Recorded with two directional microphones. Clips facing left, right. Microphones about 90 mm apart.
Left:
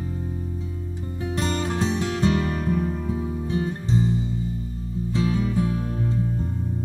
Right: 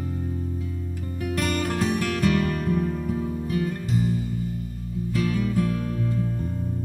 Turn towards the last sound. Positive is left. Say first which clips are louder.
# left 1 dB
turn(degrees=25)  # may be behind; listen again after turning